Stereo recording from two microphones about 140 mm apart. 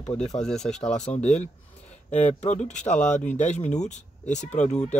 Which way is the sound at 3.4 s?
60° left (ahead or behind).